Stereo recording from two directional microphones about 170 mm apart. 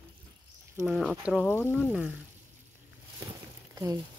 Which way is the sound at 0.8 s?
Centre (ahead or behind).